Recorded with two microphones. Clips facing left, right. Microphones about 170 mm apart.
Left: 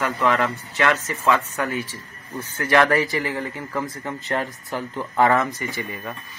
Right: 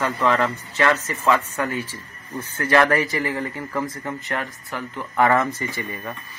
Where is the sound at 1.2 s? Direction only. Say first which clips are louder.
Even; 20° right (ahead or behind).